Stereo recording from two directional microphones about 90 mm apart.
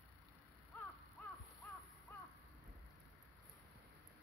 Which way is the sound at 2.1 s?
25° left (ahead or behind).